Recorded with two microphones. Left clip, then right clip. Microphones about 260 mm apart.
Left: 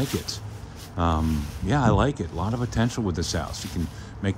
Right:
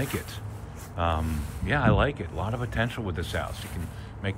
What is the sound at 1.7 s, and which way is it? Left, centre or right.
Speech, centre.